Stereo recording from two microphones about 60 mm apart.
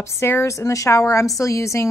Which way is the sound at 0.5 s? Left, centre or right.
Left.